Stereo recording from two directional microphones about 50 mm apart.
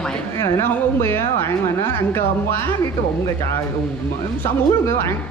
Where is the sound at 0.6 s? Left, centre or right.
Left.